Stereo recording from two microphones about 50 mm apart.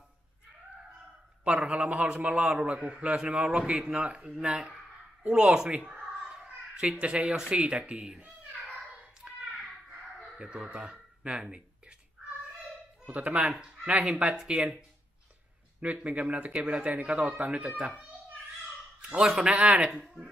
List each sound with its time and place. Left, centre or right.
1.4 s a man's voice: right
5.9 s a sound: centre
7.3 s a man's voice: centre
8.7 s a sound: right
10.2 s speech: centre
13.0 s a man's voice: right
14.5 s speech: centre
15.8 s a man's voice: right
18.9 s a man's voice: centre